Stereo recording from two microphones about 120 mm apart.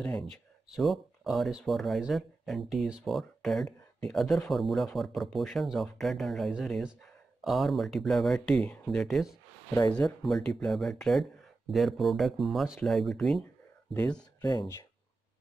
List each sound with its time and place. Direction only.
0.0 s speech: 5° left (ahead or behind)
13.9 s speech: 15° left (ahead or behind)
14.4 s speech: 40° left (ahead or behind)